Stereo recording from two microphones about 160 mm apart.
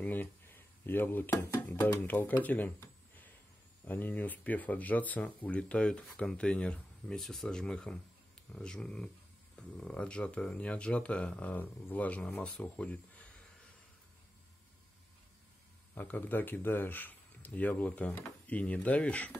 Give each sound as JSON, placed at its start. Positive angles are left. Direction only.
{"t": 0.0, "sound": "speech", "side_deg": 10}
{"t": 15.9, "sound": "speech", "side_deg": 10}